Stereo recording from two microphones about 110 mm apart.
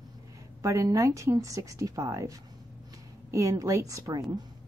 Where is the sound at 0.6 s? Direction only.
30° right (ahead or behind).